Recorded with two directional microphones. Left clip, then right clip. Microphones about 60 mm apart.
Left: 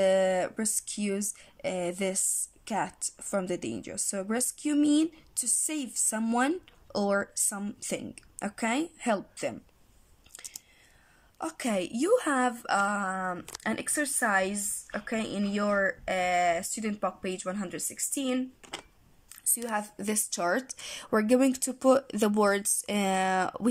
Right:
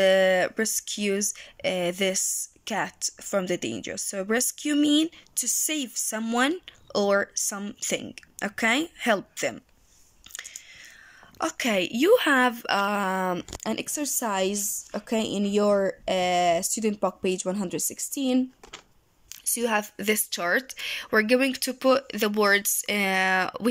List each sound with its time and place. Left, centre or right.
0.0 s speech: centre
10.3 s whispering: left
11.5 s speech: centre
12.8 s speech: centre
13.1 s speech: right
13.6 s speech: right
13.9 s speech: right
15.6 s speech: right
19.5 s speech: centre
20.0 s speech: left
20.2 s speech: left
22.6 s speech: left